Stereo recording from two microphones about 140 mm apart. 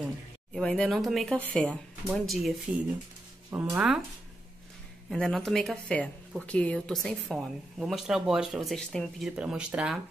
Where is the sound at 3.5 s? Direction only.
10° right (ahead or behind).